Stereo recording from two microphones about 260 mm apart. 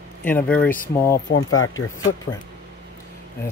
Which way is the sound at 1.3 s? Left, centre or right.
Left.